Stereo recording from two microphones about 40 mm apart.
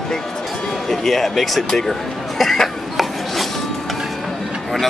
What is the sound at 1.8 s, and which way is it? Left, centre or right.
Speech, centre.